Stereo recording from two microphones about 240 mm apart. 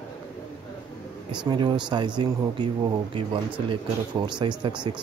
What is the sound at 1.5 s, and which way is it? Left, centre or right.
Speech, centre.